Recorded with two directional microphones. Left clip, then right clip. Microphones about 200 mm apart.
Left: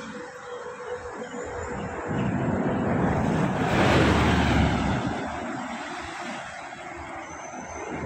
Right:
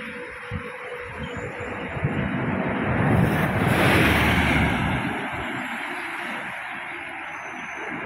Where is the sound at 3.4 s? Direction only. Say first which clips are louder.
Right 1 dB; 45° right (ahead or behind).